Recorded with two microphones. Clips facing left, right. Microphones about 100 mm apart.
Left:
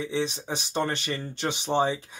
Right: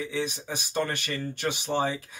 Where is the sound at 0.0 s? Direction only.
25° left (ahead or behind).